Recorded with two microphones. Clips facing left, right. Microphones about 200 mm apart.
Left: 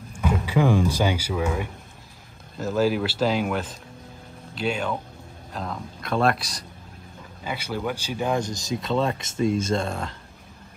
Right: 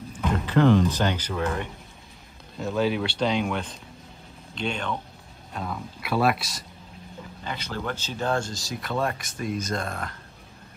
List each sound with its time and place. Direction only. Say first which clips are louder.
0.2 s speech: right 1 dB; 10° left (ahead or behind)
7.4 s speech: left 3 dB; 10° left (ahead or behind); by 10.1 s 30° left (ahead or behind)